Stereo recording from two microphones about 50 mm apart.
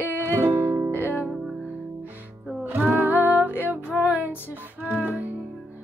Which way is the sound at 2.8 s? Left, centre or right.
Right.